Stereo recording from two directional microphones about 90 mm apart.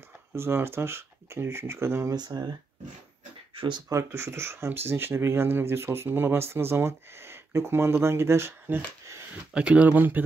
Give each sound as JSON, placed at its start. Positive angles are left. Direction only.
{"t": 0.3, "sound": "speech", "side_deg": -25}
{"t": 2.1, "sound": "speech", "side_deg": -50}
{"t": 3.5, "sound": "speech", "side_deg": -65}
{"t": 3.9, "sound": "speech", "side_deg": -30}
{"t": 9.5, "sound": "speech", "side_deg": -10}